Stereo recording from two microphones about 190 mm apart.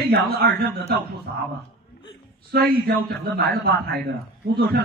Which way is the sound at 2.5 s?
55° right (ahead or behind).